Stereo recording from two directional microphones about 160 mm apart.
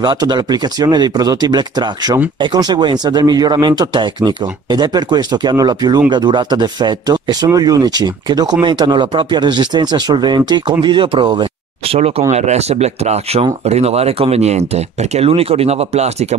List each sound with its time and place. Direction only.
0.0 s speech: 25° right (ahead or behind)
12.3 s speech: 45° right (ahead or behind)